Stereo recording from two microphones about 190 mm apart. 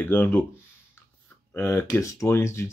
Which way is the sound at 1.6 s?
15° left (ahead or behind).